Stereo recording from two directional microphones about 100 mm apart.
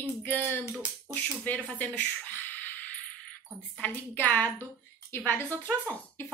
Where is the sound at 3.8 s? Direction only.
20° left (ahead or behind).